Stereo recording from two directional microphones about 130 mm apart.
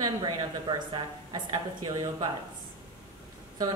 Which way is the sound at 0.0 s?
35° right (ahead or behind).